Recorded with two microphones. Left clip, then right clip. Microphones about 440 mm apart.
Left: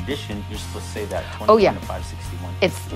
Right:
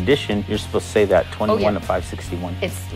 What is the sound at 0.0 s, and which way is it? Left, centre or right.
Speech, right.